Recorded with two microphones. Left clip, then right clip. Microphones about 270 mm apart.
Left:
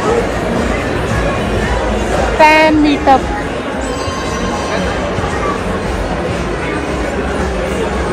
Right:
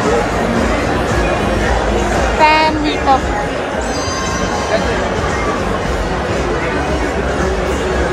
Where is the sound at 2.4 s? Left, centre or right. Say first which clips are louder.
Left 3 dB; left.